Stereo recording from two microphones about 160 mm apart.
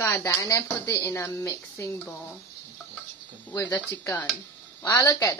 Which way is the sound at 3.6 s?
15° left (ahead or behind).